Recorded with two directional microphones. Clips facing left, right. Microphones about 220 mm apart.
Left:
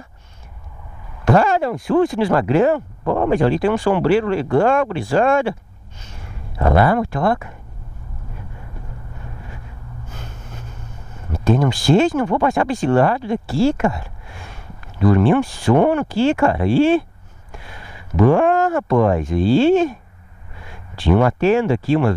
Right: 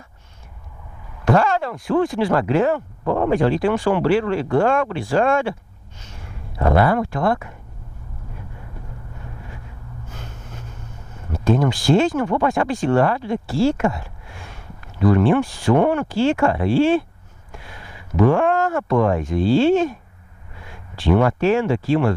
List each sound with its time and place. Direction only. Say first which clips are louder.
1.2 s speech: left 2 dB; 10° left (ahead or behind)
6.6 s speech: left 1 dB; 20° left (ahead or behind)
12.2 s speech: left 2 dB; 15° left (ahead or behind)
15.0 s speech: left 1 dB; 15° left (ahead or behind)
18.3 s speech: left 3 dB; 10° left (ahead or behind)
21.1 s speech: left 2 dB; 15° left (ahead or behind)